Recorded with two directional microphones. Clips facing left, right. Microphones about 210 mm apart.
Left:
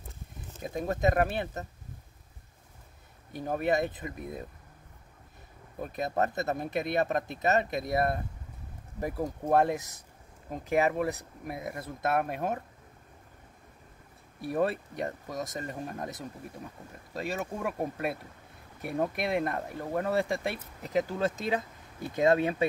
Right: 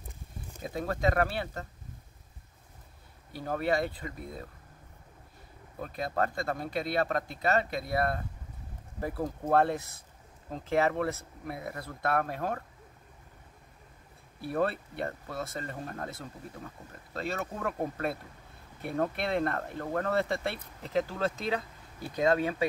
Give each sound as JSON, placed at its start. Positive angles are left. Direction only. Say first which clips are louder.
{"t": 0.7, "sound": "speech", "louder": "left 2 dB", "side_deg": 20}
{"t": 3.3, "sound": "speech", "louder": "left 1 dB", "side_deg": 15}
{"t": 5.8, "sound": "speech", "louder": "left 2 dB", "side_deg": 20}
{"t": 14.5, "sound": "speech", "louder": "left 1 dB", "side_deg": 15}